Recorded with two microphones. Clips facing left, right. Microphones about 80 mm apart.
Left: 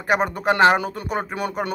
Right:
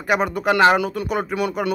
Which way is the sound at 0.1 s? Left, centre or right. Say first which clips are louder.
Right 1 dB; left.